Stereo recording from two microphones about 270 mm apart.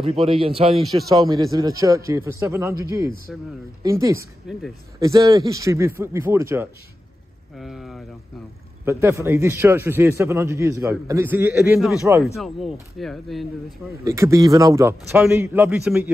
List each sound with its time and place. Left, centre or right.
0.0 s a man's voice: right
3.3 s speech: centre
3.8 s a man's voice: centre
14.0 s a man's voice: centre